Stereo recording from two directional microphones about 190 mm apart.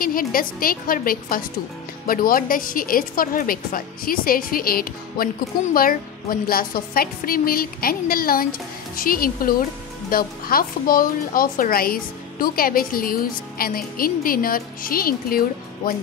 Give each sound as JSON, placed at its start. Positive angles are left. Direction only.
{"t": 0.0, "sound": "a woman's voice", "side_deg": 50}